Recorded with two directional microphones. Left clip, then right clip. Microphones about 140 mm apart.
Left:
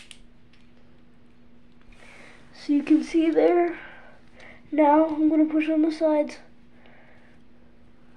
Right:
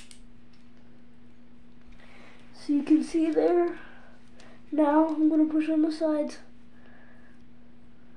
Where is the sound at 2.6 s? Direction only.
5° left (ahead or behind).